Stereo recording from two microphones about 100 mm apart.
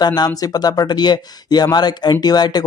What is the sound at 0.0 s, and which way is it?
Speech, 45° left (ahead or behind).